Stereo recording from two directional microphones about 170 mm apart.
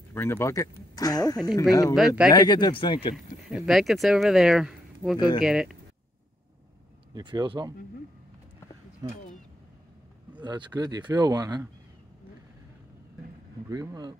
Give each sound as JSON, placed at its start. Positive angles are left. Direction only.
{"t": 0.1, "sound": "speech", "side_deg": 15}
{"t": 2.0, "sound": "speech", "side_deg": 0}
{"t": 2.3, "sound": "speech", "side_deg": 25}
{"t": 3.4, "sound": "speech", "side_deg": 0}
{"t": 7.2, "sound": "speech", "side_deg": -25}
{"t": 9.0, "sound": "speech", "side_deg": -25}
{"t": 10.4, "sound": "speech", "side_deg": -25}
{"t": 13.7, "sound": "speech", "side_deg": -20}